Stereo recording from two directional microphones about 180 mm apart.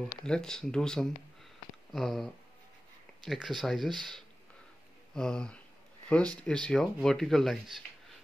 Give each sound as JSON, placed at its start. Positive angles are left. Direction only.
{"t": 0.2, "sound": "speech", "side_deg": 5}